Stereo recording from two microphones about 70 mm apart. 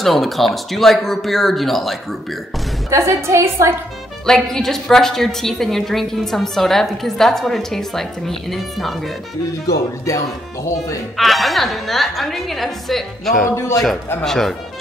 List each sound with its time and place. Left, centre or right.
0.0 s a woman's voice: centre
2.9 s a woman's voice: right
4.3 s a woman's voice: centre
10.0 s speech: left
11.1 s a woman's voice: centre